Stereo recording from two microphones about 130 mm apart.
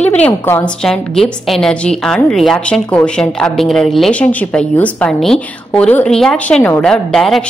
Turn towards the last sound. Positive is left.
turn(degrees=5)  # may be behind; listen again after turning